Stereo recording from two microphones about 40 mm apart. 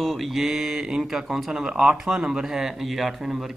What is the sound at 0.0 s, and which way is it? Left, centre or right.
Mantra, centre.